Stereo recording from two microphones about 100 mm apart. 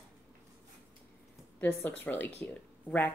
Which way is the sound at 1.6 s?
20° left (ahead or behind).